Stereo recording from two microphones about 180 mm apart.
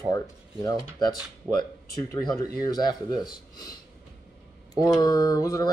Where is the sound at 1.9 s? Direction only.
20° left (ahead or behind).